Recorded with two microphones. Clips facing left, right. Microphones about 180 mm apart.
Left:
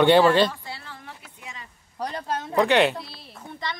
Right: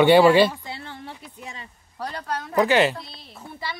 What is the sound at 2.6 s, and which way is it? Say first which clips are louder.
Speech: right 1 dB; centre (ahead or behind).